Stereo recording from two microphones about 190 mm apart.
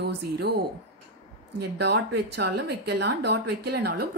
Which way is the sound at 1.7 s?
60° right (ahead or behind).